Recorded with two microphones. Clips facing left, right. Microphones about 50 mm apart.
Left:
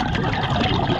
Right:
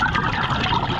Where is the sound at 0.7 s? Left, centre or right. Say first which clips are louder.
Even; centre.